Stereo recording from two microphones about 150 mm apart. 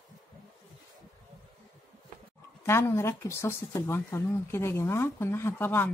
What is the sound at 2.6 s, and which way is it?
Speech, 15° left (ahead or behind).